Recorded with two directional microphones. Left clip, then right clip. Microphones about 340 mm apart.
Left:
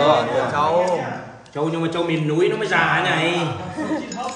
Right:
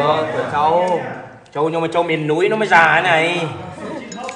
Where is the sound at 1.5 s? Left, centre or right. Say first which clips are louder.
Right 5 dB; centre.